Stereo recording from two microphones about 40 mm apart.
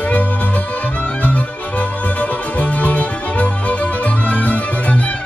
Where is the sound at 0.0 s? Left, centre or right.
Left.